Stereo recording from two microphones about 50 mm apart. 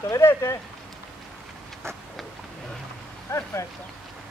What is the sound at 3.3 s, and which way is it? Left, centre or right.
Speech, left.